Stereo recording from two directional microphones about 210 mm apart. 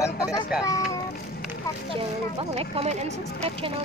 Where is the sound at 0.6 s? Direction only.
15° left (ahead or behind).